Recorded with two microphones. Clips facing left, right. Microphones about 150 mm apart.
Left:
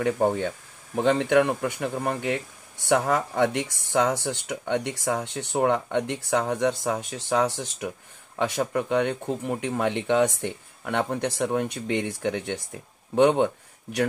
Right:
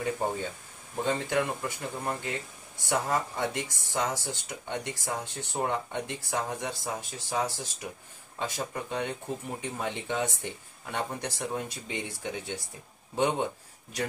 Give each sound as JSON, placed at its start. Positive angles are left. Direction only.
{"t": 0.0, "sound": "speech", "side_deg": 60}